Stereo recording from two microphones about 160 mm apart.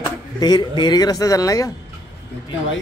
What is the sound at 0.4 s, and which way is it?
A man's voice, 25° left (ahead or behind).